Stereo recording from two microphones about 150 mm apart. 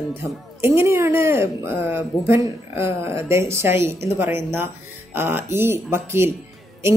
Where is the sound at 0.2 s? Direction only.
15° right (ahead or behind).